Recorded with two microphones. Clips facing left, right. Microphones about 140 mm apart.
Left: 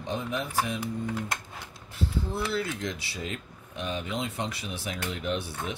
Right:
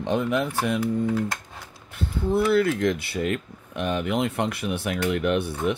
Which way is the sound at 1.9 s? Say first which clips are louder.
Right 7 dB; 55° right (ahead or behind).